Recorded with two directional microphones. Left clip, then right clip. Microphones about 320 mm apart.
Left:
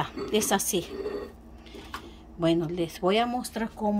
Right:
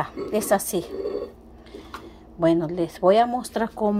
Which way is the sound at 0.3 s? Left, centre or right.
Centre.